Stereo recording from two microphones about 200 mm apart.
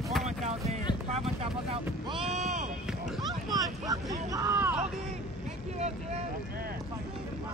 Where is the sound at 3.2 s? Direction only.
20° right (ahead or behind).